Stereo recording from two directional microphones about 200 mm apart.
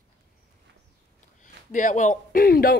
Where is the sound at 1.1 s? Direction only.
40° left (ahead or behind).